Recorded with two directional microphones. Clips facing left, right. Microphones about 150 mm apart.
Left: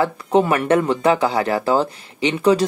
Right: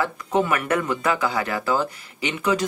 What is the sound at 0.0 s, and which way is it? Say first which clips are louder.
A woman's voice: left 5 dB; 30° left (ahead or behind).